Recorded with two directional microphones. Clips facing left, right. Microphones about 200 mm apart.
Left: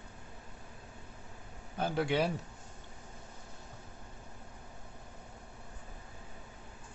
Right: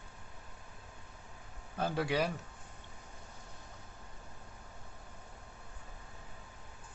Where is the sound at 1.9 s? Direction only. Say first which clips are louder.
Left 2 dB; 25° left (ahead or behind).